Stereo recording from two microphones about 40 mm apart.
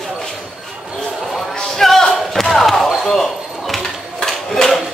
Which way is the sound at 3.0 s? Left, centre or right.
Centre.